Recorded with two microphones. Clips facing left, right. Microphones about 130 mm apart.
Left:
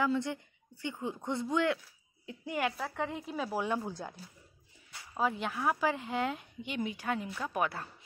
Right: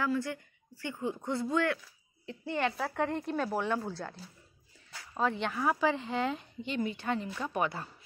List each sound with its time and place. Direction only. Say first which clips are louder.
0.0 s a woman's voice: left 1 dB; 20° left (ahead or behind); by 3.6 s 5° left (ahead or behind)
3.6 s a woman's voice: right 1 dB; 15° left (ahead or behind)